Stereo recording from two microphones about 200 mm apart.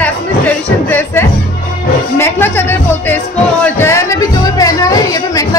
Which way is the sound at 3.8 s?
15° left (ahead or behind).